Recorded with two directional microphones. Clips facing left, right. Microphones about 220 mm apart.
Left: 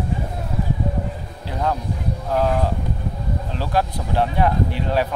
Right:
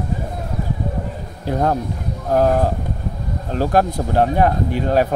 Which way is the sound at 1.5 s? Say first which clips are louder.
Right 5 dB; 45° right (ahead or behind).